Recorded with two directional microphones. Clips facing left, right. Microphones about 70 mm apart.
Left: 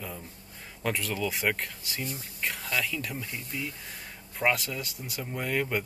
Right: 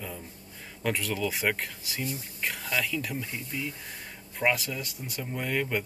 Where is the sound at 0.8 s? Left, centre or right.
Centre.